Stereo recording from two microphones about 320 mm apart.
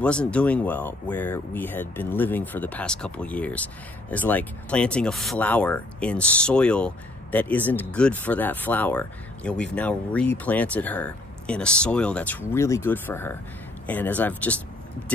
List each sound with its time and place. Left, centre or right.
0.0 s speech: centre